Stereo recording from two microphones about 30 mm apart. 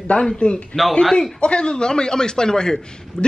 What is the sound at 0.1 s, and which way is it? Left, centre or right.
A man's voice, left.